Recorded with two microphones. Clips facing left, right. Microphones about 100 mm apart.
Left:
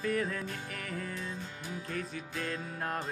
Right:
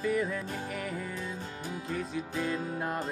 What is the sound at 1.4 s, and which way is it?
Music, 35° right (ahead or behind).